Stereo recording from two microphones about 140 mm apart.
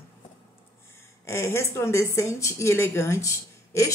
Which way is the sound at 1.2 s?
20° left (ahead or behind).